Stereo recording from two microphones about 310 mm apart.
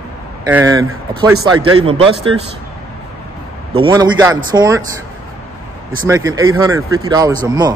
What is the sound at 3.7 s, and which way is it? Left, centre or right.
Speech, centre.